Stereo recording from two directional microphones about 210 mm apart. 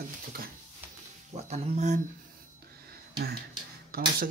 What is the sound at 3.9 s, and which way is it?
Speech, 45° right (ahead or behind).